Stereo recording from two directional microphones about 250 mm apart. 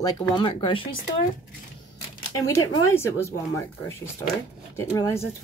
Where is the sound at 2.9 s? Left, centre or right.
Centre.